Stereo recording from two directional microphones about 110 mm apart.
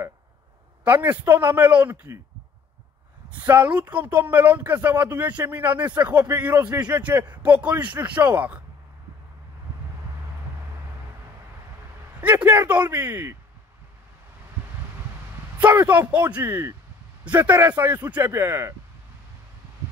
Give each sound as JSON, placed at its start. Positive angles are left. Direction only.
{"t": 0.8, "sound": "a man's voice", "side_deg": -15}
{"t": 3.3, "sound": "a man's voice", "side_deg": -15}
{"t": 12.4, "sound": "a man's voice", "side_deg": -20}
{"t": 15.5, "sound": "a man's voice", "side_deg": -20}